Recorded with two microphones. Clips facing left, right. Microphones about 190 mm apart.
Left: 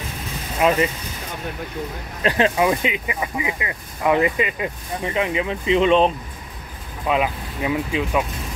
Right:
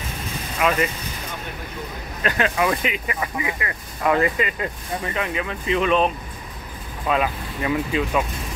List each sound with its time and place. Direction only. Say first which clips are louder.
0.6 s speech: left 3 dB; 30° left (ahead or behind)
2.2 s speech: left 3 dB; 30° left (ahead or behind)
7.1 s speech: left 1 dB; 15° left (ahead or behind)